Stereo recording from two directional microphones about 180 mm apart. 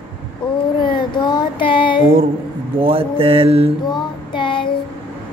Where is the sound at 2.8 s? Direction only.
30° right (ahead or behind).